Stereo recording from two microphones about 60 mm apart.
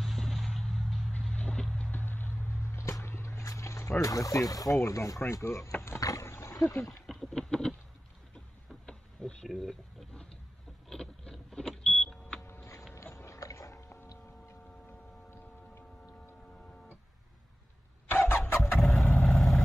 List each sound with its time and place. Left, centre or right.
0.0 s vehicle: centre
1.3 s vehicle: left
1.9 s vehicle: left
2.8 s a sound: left
4.8 s speech: left
5.9 s boat: left
6.2 s roaring cats: left
6.5 s speech: left
6.9 s a sound: centre
8.8 s a sound: centre
10.9 s vehicle: centre
13.1 s music: left
18.1 s vehicle: left
18.8 s vehicle: centre